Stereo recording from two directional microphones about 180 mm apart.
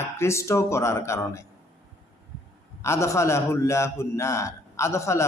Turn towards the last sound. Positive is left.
turn(degrees=15)  # may be behind; listen again after turning